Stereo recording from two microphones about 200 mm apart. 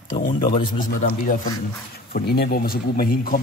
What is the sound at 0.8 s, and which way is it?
A man's voice, 45° left (ahead or behind).